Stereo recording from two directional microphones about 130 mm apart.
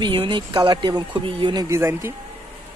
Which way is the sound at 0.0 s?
40° right (ahead or behind).